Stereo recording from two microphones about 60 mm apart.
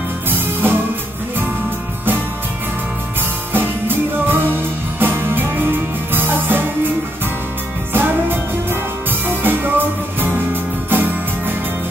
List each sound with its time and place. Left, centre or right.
0.3 s music: right
3.5 s music: right
7.9 s music: right